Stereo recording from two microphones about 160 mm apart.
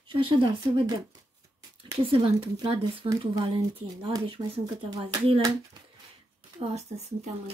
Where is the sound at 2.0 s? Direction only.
35° right (ahead or behind).